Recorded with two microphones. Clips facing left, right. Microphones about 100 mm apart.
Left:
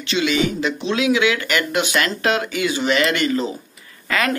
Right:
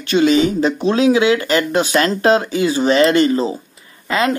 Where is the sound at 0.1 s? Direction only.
40° right (ahead or behind).